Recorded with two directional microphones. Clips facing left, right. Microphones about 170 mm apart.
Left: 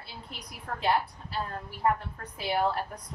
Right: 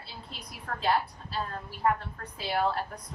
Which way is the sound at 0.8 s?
15° left (ahead or behind).